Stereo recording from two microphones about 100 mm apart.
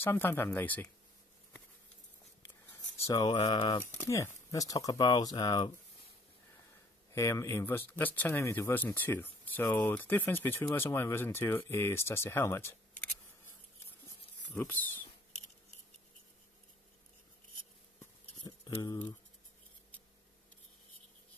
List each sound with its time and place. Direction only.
0.0 s speech: 25° left (ahead or behind)
3.3 s speech: 50° left (ahead or behind)
4.0 s speech: 30° left (ahead or behind); by 5.7 s 45° left (ahead or behind)
7.1 s speech: 30° left (ahead or behind)
14.5 s speech: 20° left (ahead or behind)
18.4 s a sound: 45° left (ahead or behind)